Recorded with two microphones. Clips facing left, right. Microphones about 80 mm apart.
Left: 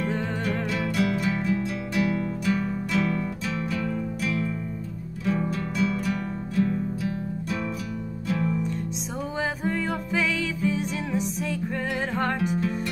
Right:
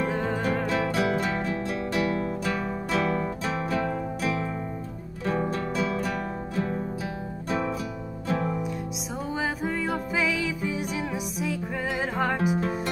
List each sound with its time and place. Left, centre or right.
0.1 s music: centre
0.7 s music: right
9.4 s music: centre